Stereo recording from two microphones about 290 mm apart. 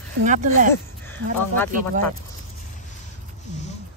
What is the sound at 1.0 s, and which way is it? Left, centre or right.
Speech, centre.